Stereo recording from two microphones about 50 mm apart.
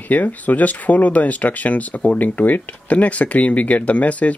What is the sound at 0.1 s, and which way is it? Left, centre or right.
Speech, left.